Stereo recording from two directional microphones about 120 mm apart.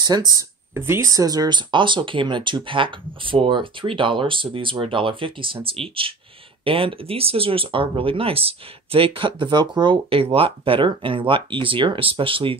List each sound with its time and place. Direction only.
0.0 s speech: 35° right (ahead or behind)
0.4 s speech: 20° right (ahead or behind); by 12.5 s 50° right (ahead or behind)